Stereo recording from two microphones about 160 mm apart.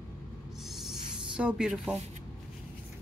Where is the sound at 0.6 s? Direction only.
Centre (ahead or behind).